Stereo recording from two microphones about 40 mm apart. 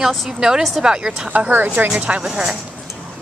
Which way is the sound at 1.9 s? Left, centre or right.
Right.